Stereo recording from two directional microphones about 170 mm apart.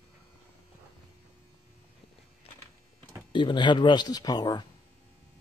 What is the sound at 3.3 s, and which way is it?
Speech, 30° left (ahead or behind).